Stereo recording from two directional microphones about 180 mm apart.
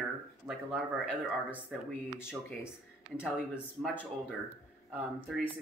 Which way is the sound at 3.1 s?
10° left (ahead or behind).